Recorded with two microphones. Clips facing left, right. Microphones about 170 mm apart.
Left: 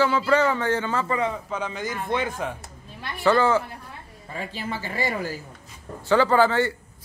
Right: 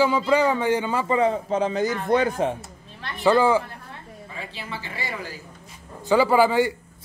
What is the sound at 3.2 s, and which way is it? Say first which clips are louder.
Speech: right 2 dB; 10° right (ahead or behind).